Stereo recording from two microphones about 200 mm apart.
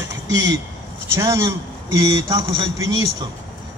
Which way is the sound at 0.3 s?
20° right (ahead or behind).